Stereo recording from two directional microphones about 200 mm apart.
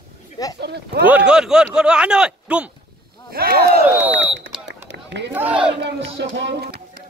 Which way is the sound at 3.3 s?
50° right (ahead or behind).